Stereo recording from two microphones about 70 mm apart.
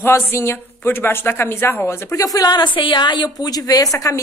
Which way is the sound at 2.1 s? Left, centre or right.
Left.